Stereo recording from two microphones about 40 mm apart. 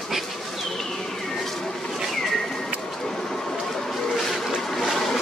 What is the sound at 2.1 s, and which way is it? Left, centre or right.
Bird, centre.